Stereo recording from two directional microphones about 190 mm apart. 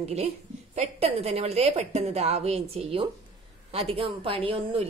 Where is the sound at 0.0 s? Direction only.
35° right (ahead or behind).